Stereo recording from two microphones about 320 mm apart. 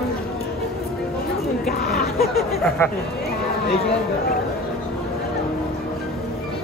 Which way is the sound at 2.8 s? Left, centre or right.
Centre.